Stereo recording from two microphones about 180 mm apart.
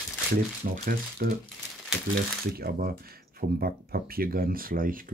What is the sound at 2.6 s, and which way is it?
Speech, 55° right (ahead or behind).